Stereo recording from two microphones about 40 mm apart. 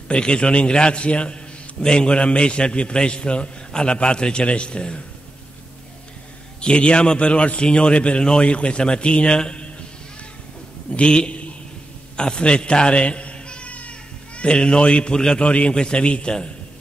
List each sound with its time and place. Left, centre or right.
0.1 s a man's voice: left
6.6 s a man's voice: left
10.9 s a man's voice: left